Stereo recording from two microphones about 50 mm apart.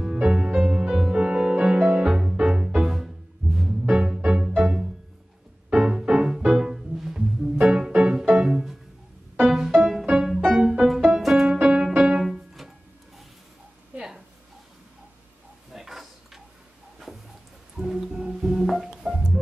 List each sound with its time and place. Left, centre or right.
0.2 s music: centre
5.7 s music: centre
11.6 s music: centre
12.2 s music: centre
13.9 s a sound: centre
15.7 s a sound: centre
17.8 s music: centre
19.0 s music: centre